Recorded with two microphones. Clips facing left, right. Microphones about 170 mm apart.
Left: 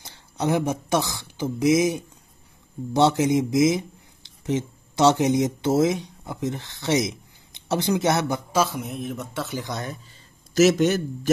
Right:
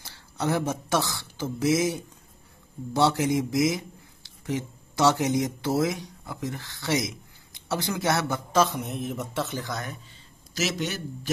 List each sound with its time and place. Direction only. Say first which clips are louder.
0.0 s speech: left 3 dB; 20° left (ahead or behind)
8.5 s speech: even; 5° left (ahead or behind)
9.6 s speech: left 2 dB; 20° left (ahead or behind)
10.5 s a man's voice: left 12 dB; 50° left (ahead or behind)